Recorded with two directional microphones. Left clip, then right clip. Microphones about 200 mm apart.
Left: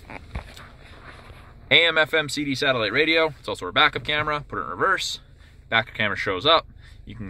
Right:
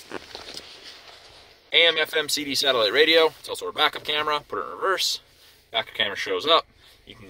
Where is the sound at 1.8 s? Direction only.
10° right (ahead or behind).